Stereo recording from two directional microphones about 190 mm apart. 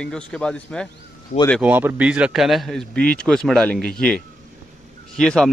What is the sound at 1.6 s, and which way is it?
Speech, 10° right (ahead or behind).